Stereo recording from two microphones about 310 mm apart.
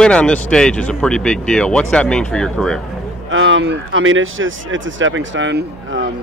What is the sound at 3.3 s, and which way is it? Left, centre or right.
Speech, right.